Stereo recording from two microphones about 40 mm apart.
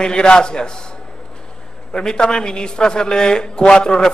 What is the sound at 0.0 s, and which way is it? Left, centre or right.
Speech, left.